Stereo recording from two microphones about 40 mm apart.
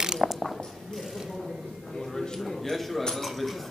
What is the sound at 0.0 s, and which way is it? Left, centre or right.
Mechanisms, centre.